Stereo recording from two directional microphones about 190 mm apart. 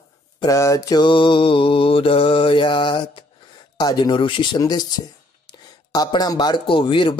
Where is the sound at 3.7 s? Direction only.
20° left (ahead or behind).